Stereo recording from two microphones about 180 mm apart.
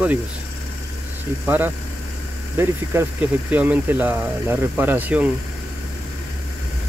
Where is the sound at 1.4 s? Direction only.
10° right (ahead or behind).